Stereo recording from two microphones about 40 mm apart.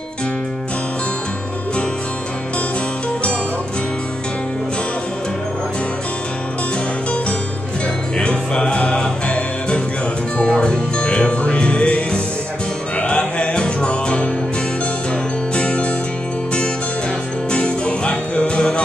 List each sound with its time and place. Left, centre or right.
8.2 s music: left
10.5 s music: left
15.5 s music: left
17.5 s music: left